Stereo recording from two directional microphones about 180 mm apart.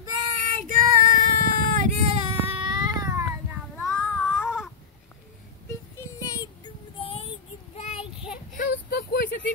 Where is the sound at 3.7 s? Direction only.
5° left (ahead or behind).